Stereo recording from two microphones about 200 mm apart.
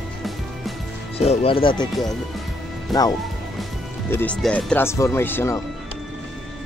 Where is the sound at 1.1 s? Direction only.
30° left (ahead or behind).